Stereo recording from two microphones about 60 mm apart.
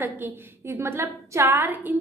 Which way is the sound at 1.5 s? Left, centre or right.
Right.